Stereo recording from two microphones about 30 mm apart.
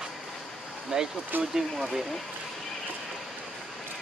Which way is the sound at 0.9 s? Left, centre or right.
Right.